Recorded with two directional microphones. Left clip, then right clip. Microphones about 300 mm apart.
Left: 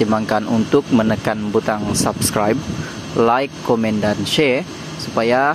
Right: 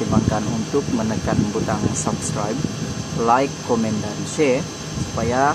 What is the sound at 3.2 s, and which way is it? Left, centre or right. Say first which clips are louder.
Speech: left 2 dB; left.